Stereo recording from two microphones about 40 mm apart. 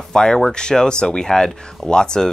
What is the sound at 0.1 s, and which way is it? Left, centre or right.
Speech, centre.